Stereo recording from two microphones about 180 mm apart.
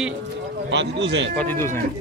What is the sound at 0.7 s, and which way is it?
Speech, 75° right (ahead or behind).